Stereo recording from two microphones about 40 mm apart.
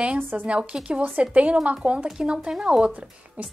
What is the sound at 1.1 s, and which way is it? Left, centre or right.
Speech, right.